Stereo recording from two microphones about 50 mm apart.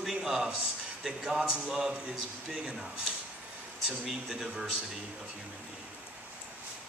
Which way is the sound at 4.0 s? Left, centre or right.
Centre.